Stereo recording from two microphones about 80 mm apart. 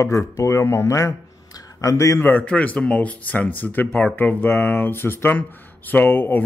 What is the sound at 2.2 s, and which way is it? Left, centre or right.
A man's voice, left.